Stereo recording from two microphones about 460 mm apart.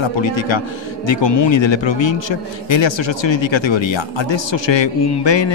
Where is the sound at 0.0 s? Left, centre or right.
Left.